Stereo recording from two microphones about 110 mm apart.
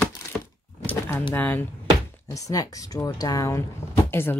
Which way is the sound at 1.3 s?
15° left (ahead or behind).